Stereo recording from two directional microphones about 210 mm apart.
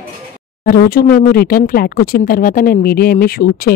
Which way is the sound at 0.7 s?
45° left (ahead or behind).